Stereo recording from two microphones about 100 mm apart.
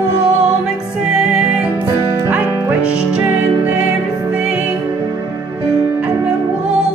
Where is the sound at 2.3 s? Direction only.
15° right (ahead or behind).